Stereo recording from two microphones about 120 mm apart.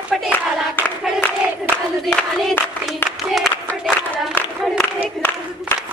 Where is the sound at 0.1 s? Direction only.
5° right (ahead or behind).